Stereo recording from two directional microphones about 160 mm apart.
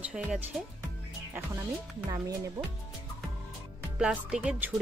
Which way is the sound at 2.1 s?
20° right (ahead or behind).